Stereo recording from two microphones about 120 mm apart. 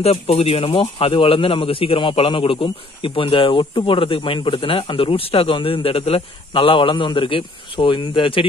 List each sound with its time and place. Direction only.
0.0 s speech: 55° left (ahead or behind)